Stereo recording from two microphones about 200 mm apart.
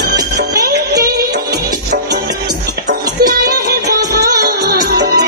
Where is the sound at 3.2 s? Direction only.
50° right (ahead or behind).